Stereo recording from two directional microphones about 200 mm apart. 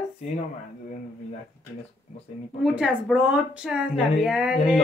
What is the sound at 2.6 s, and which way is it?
A woman's voice, 5° right (ahead or behind).